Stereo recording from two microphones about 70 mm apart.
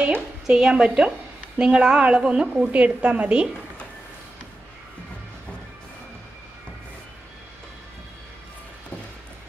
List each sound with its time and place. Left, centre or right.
0.5 s a woman's voice: centre